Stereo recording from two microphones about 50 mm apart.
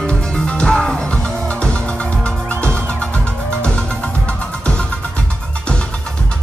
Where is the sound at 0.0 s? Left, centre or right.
Left.